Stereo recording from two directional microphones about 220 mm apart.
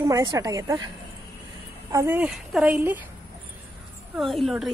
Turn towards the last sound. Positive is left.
turn(degrees=0)  # may be behind; listen again after turning